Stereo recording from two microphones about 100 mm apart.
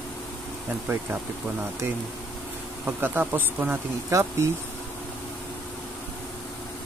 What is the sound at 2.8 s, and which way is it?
Speech, 20° right (ahead or behind).